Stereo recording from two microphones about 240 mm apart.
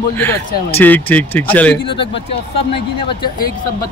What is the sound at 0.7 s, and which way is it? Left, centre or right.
Speech, centre.